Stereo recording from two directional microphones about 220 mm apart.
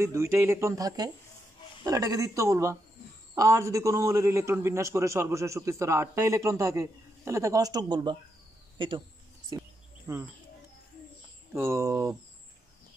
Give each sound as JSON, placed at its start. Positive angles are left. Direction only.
{"t": 0.0, "sound": "a man's voice", "side_deg": -10}
{"t": 10.1, "sound": "a man's voice", "side_deg": -15}
{"t": 11.5, "sound": "a man's voice", "side_deg": -10}